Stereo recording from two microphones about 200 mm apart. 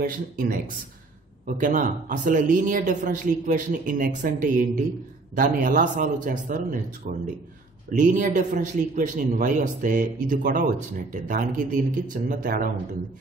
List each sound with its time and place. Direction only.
0.0 s speech: 45° right (ahead or behind)
1.6 s a man's voice: 40° right (ahead or behind)